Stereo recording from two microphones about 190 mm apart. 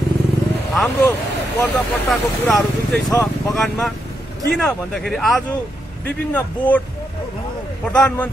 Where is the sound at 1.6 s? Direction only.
5° left (ahead or behind).